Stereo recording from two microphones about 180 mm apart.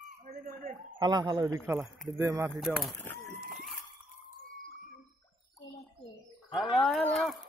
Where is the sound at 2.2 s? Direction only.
15° right (ahead or behind).